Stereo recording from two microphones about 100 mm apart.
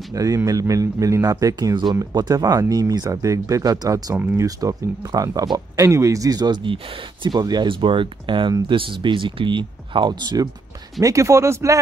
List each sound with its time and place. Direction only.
0.1 s speech: 35° right (ahead or behind)
4.1 s speech: 15° right (ahead or behind)
4.4 s speech: 35° right (ahead or behind)